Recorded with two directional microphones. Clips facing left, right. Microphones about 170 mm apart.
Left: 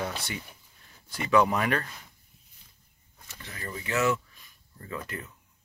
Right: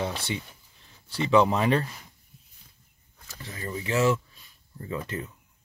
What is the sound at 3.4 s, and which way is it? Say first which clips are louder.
Speech: right 4 dB; 25° right (ahead or behind).